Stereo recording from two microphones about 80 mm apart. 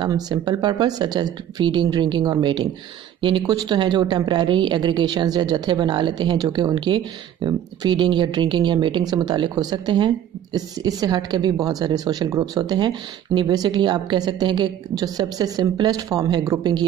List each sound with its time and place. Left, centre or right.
0.3 s speech: right
12.5 s speech: right